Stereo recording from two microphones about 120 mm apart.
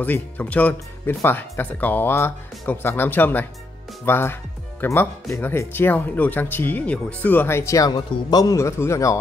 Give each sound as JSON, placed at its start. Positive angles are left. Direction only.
{"t": 0.0, "sound": "speech", "side_deg": 15}